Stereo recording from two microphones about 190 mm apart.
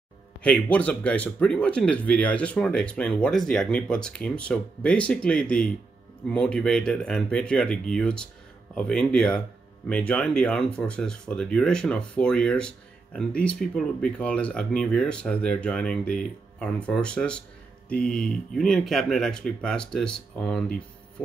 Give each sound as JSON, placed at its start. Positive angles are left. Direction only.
{"t": 0.4, "sound": "speech", "side_deg": 5}